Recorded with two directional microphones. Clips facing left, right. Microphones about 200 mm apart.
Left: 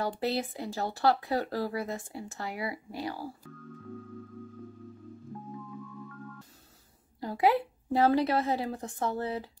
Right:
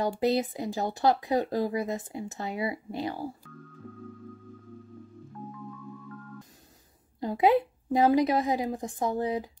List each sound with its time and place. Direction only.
0.0 s speech: 15° right (ahead or behind)
7.2 s speech: 20° right (ahead or behind)